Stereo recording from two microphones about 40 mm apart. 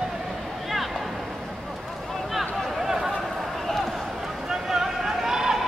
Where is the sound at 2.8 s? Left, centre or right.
Centre.